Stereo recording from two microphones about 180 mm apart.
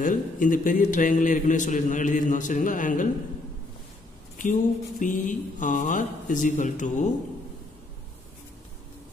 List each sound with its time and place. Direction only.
0.0 s a man's voice: 45° left (ahead or behind)
4.4 s a man's voice: 50° left (ahead or behind)